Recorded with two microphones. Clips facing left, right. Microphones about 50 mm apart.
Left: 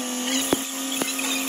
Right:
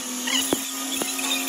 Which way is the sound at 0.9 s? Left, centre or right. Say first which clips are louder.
Left 1 dB; left.